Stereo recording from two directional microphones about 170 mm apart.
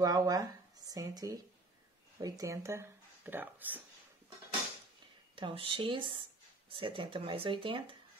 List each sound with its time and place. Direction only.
0.0 s speech: 20° right (ahead or behind)
5.3 s speech: 30° right (ahead or behind)